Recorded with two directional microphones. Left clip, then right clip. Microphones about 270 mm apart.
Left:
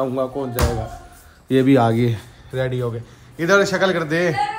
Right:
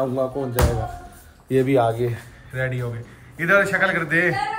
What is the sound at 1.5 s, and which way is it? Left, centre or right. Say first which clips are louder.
Speech: left 3 dB; left.